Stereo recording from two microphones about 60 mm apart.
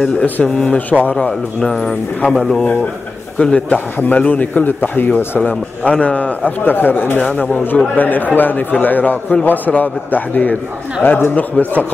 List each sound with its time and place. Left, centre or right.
0.0 s a man's voice: centre
1.1 s speech: centre
3.3 s speech: centre
3.7 s a man's voice: left
7.9 s a man's voice: left
11.0 s speech: left